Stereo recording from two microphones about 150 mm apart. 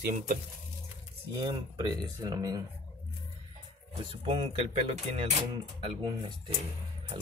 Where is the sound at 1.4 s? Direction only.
25° right (ahead or behind).